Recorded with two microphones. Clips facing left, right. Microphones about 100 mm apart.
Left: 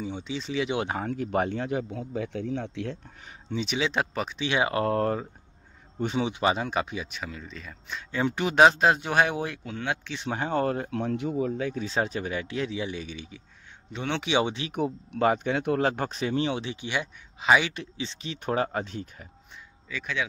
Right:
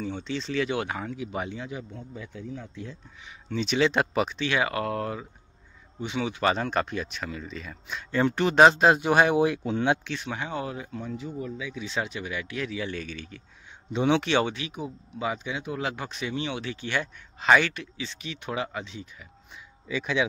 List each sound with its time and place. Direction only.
0.0 s speech: 10° left (ahead or behind)
0.9 s speech: 50° left (ahead or behind); by 3.0 s 75° left (ahead or behind)
3.6 s speech: 5° left (ahead or behind)
4.4 s speech: 20° left (ahead or behind); by 5.2 s 40° left (ahead or behind)
6.0 s speech: 55° left (ahead or behind)
6.4 s speech: 10° left (ahead or behind); by 9.6 s 5° right (ahead or behind)
9.7 s speech: 25° right (ahead or behind)
10.2 s speech: 40° left (ahead or behind); by 14.7 s 20° left (ahead or behind)
14.7 s speech: 60° left (ahead or behind)
15.9 s speech: 40° left (ahead or behind)
16.6 s speech: 15° left (ahead or behind)
17.7 s speech: 30° left (ahead or behind); by 19.2 s 45° left (ahead or behind)
19.9 s speech: 20° right (ahead or behind)